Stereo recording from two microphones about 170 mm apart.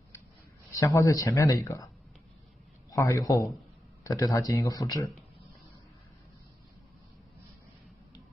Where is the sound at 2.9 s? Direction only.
20° left (ahead or behind).